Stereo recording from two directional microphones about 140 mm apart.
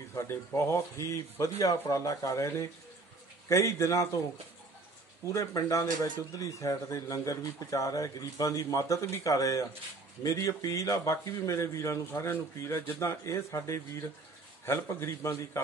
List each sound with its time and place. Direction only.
0.1 s speech: 20° left (ahead or behind)
5.2 s speech: 20° left (ahead or behind)